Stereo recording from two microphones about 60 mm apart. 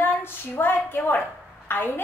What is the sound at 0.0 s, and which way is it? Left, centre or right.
A woman's voice, left.